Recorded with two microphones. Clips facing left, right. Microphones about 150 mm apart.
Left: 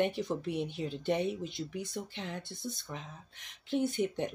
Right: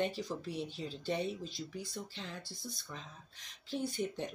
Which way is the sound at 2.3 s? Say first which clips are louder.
Left 6 dB; 20° left (ahead or behind).